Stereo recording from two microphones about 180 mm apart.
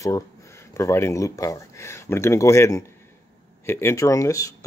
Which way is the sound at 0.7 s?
15° left (ahead or behind).